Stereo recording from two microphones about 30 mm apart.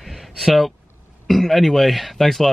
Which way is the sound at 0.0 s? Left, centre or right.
Centre.